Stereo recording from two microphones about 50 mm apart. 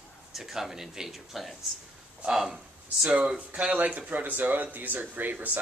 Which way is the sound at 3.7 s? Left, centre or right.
Right.